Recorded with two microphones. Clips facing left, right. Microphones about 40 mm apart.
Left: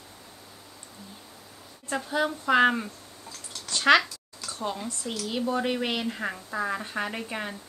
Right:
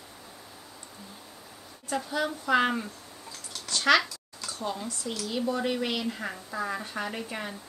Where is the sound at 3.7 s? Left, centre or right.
Left.